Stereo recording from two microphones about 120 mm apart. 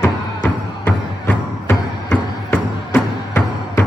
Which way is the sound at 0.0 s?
15° left (ahead or behind).